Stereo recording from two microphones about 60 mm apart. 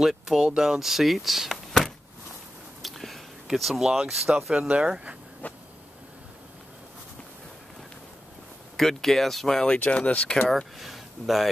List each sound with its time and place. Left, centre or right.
0.0 s speech: centre
2.8 s a sound: centre
3.8 s speech: centre
4.6 s speech: right
5.4 s a sound: left
8.7 s speech: centre
9.7 s speech: left
10.8 s speech: centre